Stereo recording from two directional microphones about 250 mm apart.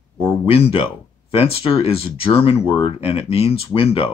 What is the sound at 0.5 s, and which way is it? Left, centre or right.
Speech, left.